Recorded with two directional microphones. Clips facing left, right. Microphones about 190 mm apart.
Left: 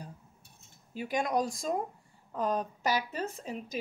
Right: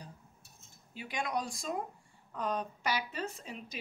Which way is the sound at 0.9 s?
45° left (ahead or behind).